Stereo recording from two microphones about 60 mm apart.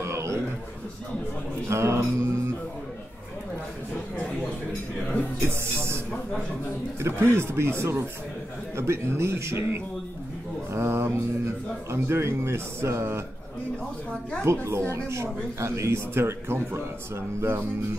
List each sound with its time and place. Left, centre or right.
0.0 s a sound: right
1.7 s music: right
5.4 s music: right
7.0 s a sound: right
7.3 s speech: right
14.4 s speech: right